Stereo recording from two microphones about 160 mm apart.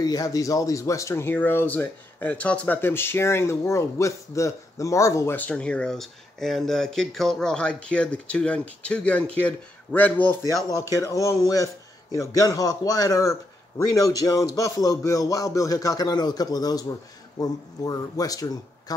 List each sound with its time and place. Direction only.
0.0 s speech: 20° left (ahead or behind)
10.4 s speech: 20° left (ahead or behind)